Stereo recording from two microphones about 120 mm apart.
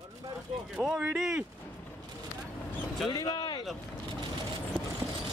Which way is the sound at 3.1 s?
35° left (ahead or behind).